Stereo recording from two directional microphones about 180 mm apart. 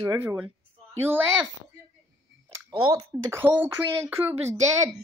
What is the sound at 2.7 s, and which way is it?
Speech, 25° right (ahead or behind).